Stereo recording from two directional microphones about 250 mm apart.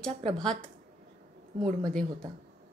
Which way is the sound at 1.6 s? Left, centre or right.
Centre.